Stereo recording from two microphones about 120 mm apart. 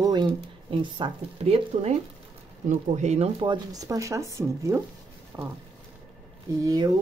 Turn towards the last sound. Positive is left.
turn(degrees=-35)  # may be behind; listen again after turning